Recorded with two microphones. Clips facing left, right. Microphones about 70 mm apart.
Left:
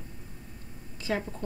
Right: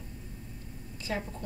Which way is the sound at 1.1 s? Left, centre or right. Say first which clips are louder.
Left 4 dB; left.